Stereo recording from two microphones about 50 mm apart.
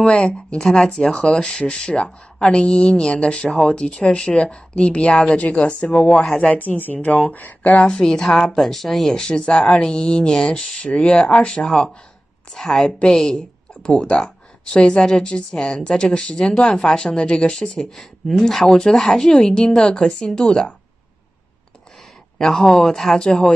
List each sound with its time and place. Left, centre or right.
0.0 s speech: centre; by 7.8 s left
7.8 s speech: centre
9.1 s speech: centre
13.8 s speech: left
22.4 s speech: centre